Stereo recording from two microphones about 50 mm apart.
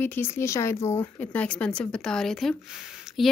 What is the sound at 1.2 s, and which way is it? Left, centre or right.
Speech, left.